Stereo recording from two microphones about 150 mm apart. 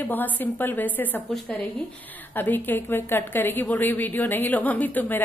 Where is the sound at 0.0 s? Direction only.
10° left (ahead or behind).